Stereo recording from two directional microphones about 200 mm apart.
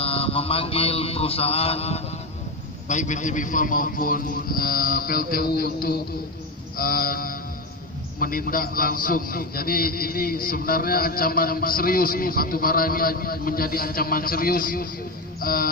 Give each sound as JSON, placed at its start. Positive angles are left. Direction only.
{"t": 0.0, "sound": "mantra", "side_deg": 30}
{"t": 2.9, "sound": "a man's voice", "side_deg": 35}